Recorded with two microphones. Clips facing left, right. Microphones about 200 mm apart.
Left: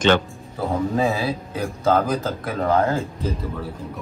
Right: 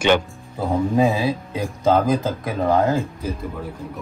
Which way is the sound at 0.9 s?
15° right (ahead or behind).